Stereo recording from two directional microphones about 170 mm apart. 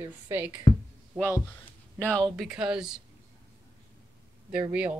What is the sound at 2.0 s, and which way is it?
Speech, 5° left (ahead or behind).